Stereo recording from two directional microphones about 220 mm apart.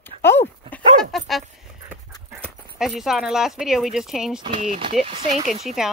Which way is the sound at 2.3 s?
Centre (ahead or behind).